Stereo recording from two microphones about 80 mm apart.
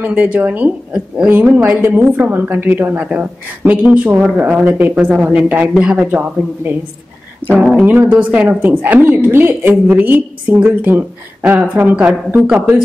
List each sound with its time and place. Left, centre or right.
0.0 s a woman's voice: right
7.4 s music: centre
7.7 s a woman's voice: right